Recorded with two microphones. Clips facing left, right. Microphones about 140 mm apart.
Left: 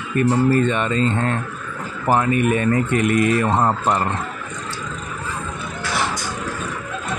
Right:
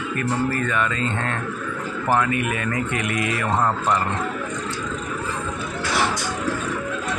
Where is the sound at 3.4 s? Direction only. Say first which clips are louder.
Left 3 dB; 30° left (ahead or behind).